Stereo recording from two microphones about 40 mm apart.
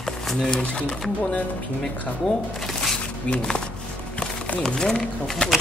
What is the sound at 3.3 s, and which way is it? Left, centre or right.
Speech, left.